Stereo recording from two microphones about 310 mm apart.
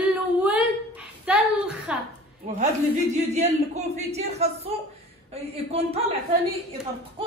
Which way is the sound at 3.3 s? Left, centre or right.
Right.